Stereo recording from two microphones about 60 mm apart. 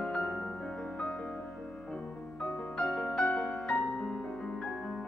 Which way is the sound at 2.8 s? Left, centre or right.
Centre.